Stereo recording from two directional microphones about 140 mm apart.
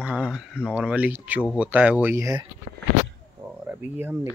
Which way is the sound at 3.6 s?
15° right (ahead or behind).